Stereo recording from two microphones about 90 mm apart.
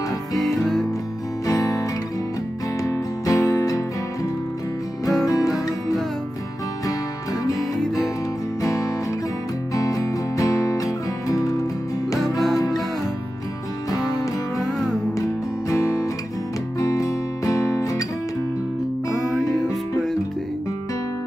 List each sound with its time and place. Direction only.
1.5 s music: 40° left (ahead or behind)
5.0 s music: 40° left (ahead or behind)
7.4 s music: 40° left (ahead or behind)
9.8 s music: 40° left (ahead or behind)
12.5 s music: 40° left (ahead or behind)
13.8 s music: 40° left (ahead or behind)
15.7 s guitar: 35° left (ahead or behind)
19.4 s music: 40° left (ahead or behind)